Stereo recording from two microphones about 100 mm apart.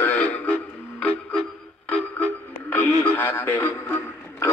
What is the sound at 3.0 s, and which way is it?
Radio, 15° left (ahead or behind).